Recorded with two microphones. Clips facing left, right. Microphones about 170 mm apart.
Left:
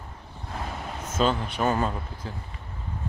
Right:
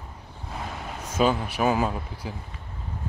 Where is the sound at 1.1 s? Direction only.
10° right (ahead or behind).